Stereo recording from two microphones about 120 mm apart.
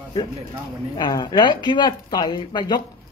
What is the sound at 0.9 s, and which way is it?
Speech, 35° left (ahead or behind).